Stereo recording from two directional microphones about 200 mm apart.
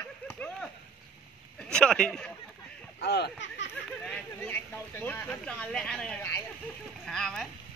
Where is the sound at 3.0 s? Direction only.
55° left (ahead or behind).